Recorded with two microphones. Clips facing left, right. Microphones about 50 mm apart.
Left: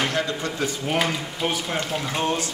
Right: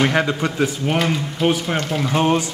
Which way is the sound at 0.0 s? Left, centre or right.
Right.